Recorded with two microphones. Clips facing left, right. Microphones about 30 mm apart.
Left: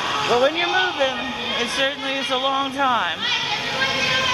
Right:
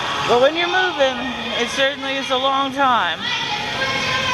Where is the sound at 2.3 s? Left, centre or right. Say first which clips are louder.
Right 4 dB; centre.